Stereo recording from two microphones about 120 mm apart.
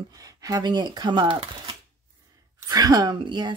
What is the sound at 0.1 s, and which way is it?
Speech, 30° right (ahead or behind).